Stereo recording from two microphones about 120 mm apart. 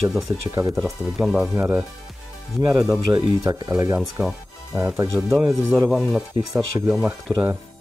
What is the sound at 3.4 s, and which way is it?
Speech, 30° right (ahead or behind).